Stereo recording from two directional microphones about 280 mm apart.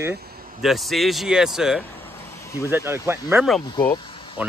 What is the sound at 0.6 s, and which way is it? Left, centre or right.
Speech, centre.